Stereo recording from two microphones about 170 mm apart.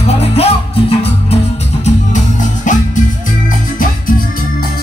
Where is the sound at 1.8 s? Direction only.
45° left (ahead or behind).